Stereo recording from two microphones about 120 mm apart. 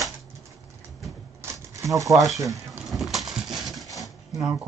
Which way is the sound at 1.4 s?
25° right (ahead or behind).